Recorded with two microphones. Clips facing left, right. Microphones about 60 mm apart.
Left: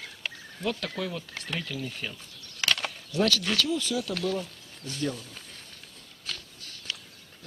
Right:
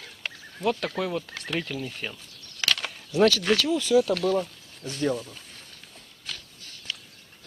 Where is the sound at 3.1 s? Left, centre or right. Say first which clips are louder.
Right 6 dB; right.